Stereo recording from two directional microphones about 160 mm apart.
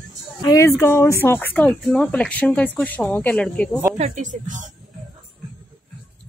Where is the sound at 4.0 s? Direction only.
50° right (ahead or behind).